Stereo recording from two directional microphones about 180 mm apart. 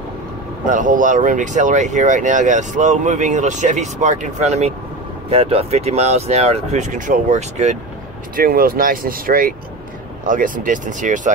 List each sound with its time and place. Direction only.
0.7 s speech: 45° right (ahead or behind)
8.4 s speech: 55° right (ahead or behind)